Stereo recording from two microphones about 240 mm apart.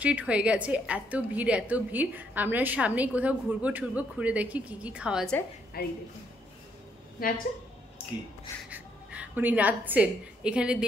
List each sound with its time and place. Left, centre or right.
0.0 s a woman's voice: centre
5.8 s speech: left
8.6 s a woman's voice: centre